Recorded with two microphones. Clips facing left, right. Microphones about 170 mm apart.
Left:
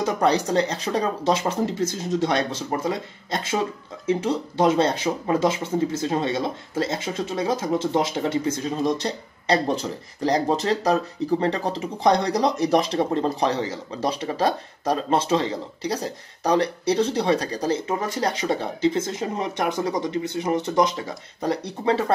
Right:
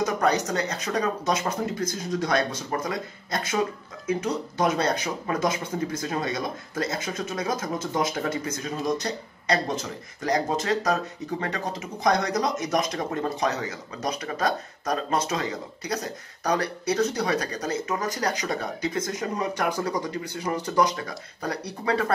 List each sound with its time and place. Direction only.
0.0 s speech: 30° left (ahead or behind)